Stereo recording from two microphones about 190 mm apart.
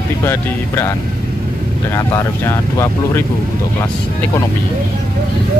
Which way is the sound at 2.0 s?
15° left (ahead or behind).